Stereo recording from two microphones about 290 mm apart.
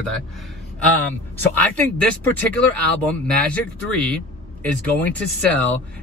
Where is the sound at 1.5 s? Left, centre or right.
Centre.